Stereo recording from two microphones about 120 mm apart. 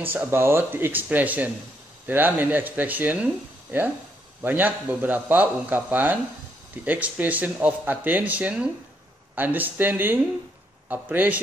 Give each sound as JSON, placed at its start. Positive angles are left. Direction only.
{"t": 0.0, "sound": "speech", "side_deg": -15}
{"t": 4.4, "sound": "speech", "side_deg": -15}